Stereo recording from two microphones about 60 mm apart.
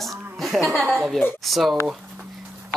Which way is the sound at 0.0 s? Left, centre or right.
Centre.